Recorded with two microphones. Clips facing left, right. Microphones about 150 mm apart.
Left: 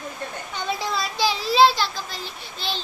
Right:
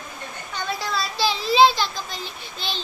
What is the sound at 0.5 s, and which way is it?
Speech, 20° left (ahead or behind).